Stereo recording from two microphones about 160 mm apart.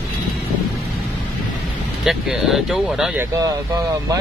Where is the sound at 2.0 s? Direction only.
5° right (ahead or behind).